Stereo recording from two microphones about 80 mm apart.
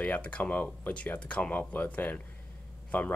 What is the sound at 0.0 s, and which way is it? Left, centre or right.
Speech, centre.